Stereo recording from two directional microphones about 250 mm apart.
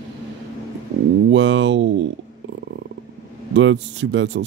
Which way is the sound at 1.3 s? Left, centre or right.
Right.